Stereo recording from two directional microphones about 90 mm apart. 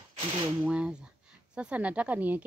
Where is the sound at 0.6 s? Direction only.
10° right (ahead or behind).